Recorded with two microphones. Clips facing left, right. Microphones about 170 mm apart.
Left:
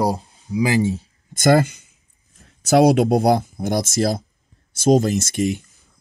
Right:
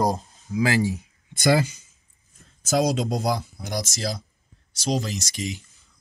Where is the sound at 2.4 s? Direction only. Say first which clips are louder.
Left 8 dB; 65° left (ahead or behind).